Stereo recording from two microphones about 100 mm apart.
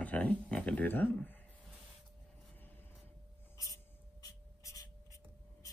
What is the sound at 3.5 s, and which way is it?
Writing, 35° left (ahead or behind).